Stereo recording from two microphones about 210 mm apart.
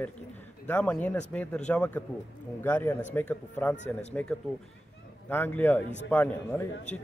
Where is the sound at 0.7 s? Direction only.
5° left (ahead or behind).